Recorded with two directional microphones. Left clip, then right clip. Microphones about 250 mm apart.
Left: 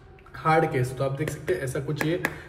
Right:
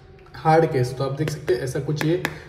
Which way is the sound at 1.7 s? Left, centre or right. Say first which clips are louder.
Right 3 dB; centre.